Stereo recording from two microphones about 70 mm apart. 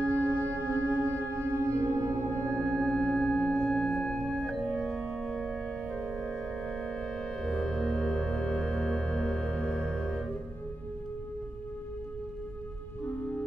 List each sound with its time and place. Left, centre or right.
0.0 s music: right
2.7 s music: centre
4.3 s organ: centre
4.6 s organ: centre
5.2 s music: centre
6.1 s music: centre